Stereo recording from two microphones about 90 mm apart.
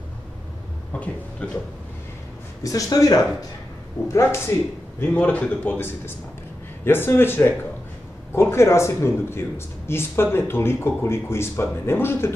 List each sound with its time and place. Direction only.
0.9 s speech: 15° left (ahead or behind)
2.6 s speech: 40° left (ahead or behind)
4.1 s speech: 30° left (ahead or behind)
5.0 s speech: 20° left (ahead or behind)